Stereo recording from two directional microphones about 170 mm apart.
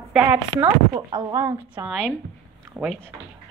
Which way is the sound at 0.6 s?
20° right (ahead or behind).